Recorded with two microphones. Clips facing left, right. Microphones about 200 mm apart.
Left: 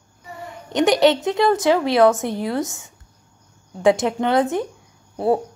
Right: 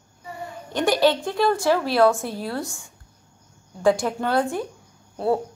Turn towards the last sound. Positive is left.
turn(degrees=15)  # may be behind; listen again after turning